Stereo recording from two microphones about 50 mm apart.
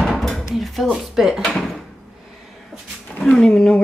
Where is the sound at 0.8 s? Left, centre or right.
Centre.